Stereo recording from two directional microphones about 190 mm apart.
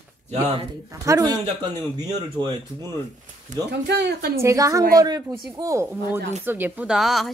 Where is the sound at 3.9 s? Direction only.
60° right (ahead or behind).